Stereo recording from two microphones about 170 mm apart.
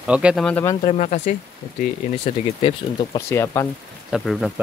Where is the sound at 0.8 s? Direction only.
40° left (ahead or behind).